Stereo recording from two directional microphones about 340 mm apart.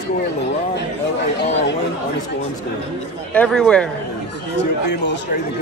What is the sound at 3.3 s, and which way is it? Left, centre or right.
Speech, centre.